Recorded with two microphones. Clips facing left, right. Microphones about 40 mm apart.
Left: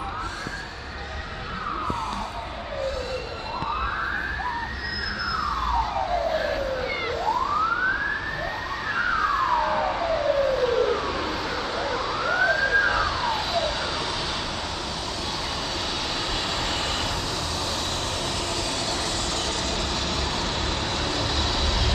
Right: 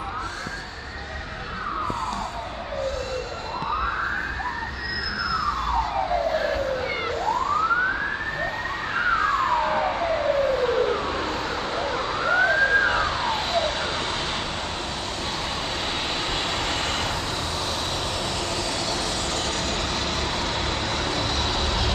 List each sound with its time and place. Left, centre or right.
6.3 s vehicle: centre
7.2 s emergency vehicle: centre
9.2 s emergency vehicle: centre
9.6 s emergency vehicle: centre
10.2 s vehicle: right
11.7 s emergency vehicle: right